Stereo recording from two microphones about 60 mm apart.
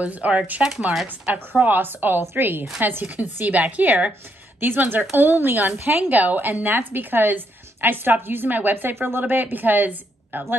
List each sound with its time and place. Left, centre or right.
0.0 s a woman's voice: right
1.0 s a woman's voice: right